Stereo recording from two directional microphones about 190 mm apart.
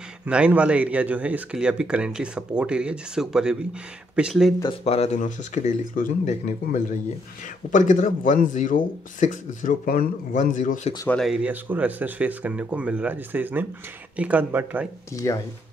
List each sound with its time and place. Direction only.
0.2 s speech: 5° right (ahead or behind)
4.8 s speech: 35° left (ahead or behind)
11.1 s speech: centre (ahead or behind)
15.2 s speech: 15° left (ahead or behind)